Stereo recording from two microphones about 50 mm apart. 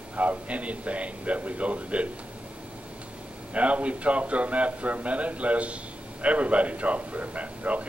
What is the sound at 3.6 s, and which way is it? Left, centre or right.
A man's voice, right.